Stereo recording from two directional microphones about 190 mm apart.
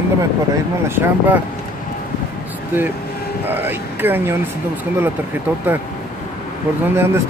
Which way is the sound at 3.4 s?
10° right (ahead or behind).